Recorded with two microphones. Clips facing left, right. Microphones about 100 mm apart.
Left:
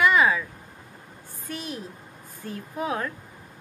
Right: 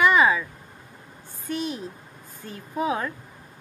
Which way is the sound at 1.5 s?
Centre (ahead or behind).